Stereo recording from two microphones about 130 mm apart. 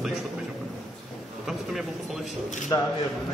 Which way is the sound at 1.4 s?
Centre (ahead or behind).